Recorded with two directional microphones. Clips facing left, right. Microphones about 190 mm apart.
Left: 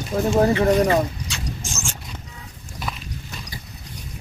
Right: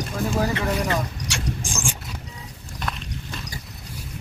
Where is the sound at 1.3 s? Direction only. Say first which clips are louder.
Right 3 dB; 80° right.